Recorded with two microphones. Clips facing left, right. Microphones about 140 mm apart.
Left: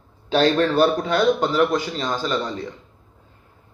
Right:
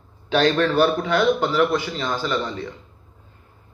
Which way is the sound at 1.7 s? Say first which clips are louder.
Even; 40° left (ahead or behind).